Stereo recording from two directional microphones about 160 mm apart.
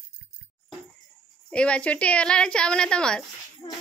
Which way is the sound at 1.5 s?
5° left (ahead or behind).